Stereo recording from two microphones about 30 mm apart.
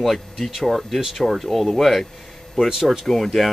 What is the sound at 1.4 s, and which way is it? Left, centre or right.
Speech, centre.